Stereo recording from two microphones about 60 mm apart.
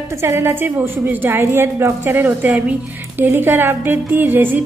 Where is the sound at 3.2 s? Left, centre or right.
Right.